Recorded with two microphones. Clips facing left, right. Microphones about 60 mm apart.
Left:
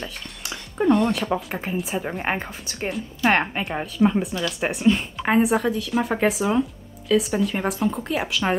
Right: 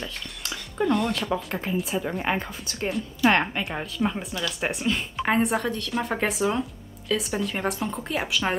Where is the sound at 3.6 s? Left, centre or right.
Centre.